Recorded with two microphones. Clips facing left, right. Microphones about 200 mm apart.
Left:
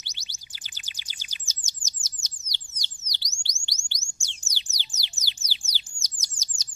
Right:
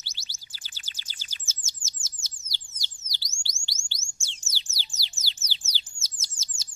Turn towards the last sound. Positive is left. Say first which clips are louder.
# left 1 dB
turn(degrees=15)  # may be behind; listen again after turning